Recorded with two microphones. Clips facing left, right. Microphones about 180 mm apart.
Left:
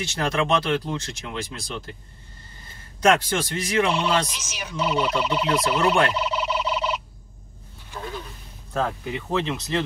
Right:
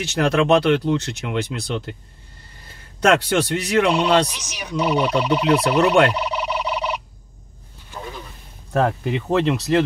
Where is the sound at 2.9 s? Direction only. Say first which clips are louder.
Right 3 dB; 65° right (ahead or behind).